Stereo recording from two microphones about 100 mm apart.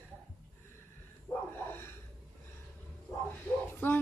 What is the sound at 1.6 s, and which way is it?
Snort, 25° left (ahead or behind).